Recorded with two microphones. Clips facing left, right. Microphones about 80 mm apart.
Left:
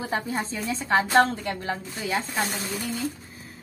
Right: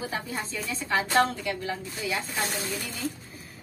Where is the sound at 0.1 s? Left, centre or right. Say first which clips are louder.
Left 5 dB; left.